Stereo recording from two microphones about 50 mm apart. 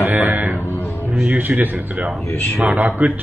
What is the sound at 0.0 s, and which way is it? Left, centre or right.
Music, right.